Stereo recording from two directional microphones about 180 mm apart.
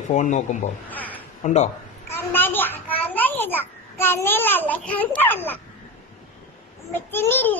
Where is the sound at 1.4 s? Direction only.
40° left (ahead or behind).